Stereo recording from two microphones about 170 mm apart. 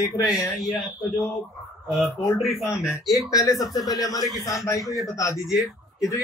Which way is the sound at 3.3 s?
20° left (ahead or behind).